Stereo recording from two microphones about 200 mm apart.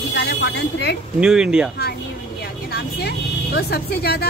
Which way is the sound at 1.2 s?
5° right (ahead or behind).